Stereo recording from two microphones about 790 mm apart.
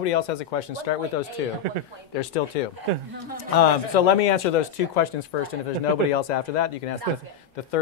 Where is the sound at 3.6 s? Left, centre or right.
Left.